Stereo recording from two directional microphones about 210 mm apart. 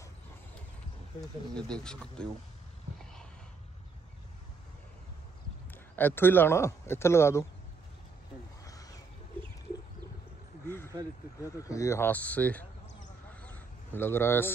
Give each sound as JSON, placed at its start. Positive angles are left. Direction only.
{"t": 1.5, "sound": "speech", "side_deg": 5}
{"t": 5.7, "sound": "speech", "side_deg": 10}
{"t": 8.6, "sound": "a sound", "side_deg": 15}
{"t": 11.4, "sound": "speech", "side_deg": 15}
{"t": 13.3, "sound": "duck", "side_deg": 5}